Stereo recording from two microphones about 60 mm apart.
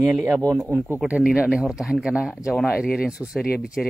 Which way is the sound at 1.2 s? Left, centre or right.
Centre.